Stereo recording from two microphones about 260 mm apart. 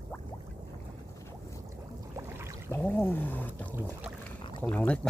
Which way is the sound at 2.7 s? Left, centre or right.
Centre.